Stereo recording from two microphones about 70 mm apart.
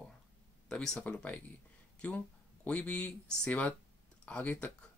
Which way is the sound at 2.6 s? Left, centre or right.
Centre.